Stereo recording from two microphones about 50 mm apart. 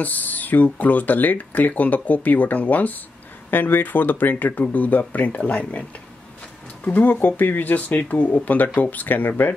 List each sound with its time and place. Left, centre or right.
0.0 s speech: left